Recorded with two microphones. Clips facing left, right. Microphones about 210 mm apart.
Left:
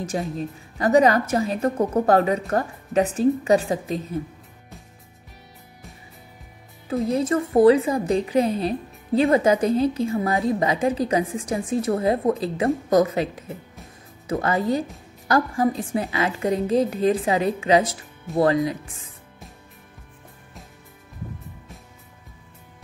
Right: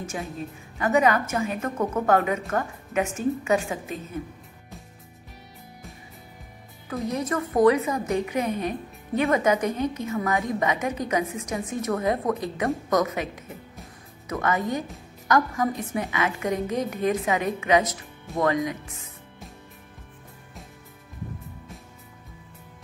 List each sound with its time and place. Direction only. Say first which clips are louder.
0.0 s a woman's voice: left 6 dB; 35° left (ahead or behind)
7.1 s a woman's voice: left 4 dB; 30° left (ahead or behind)